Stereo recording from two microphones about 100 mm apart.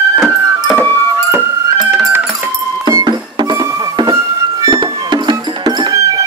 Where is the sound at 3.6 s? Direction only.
35° right (ahead or behind).